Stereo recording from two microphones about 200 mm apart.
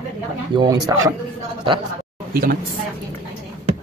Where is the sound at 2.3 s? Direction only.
50° right (ahead or behind).